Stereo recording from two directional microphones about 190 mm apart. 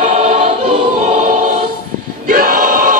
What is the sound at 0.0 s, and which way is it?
Choir, 35° right (ahead or behind).